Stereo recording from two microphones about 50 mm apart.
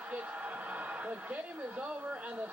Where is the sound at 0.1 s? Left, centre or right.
Right.